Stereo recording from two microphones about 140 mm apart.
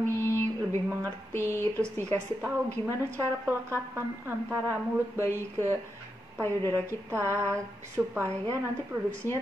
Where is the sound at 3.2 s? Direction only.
20° right (ahead or behind).